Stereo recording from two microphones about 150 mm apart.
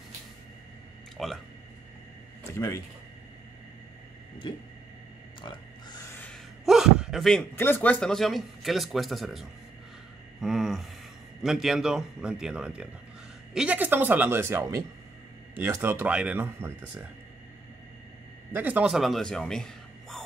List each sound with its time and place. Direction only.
1.1 s speech: centre (ahead or behind)
2.5 s speech: 20° left (ahead or behind)
5.4 s grunt: 30° left (ahead or behind)
6.6 s a sound: centre (ahead or behind)
7.5 s speech: 15° left (ahead or behind)
10.4 s a sound: centre (ahead or behind)
11.4 s speech: centre (ahead or behind)
18.5 s speech: 10° right (ahead or behind)